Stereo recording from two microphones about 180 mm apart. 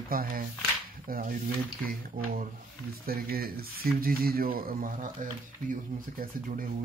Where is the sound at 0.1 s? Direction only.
55° right (ahead or behind).